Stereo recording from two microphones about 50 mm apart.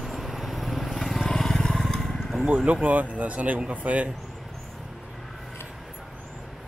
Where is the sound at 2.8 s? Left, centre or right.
Right.